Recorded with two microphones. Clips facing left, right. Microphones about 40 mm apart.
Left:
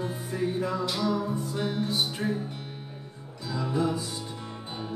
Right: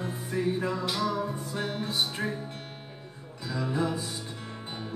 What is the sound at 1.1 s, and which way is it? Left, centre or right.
Music, right.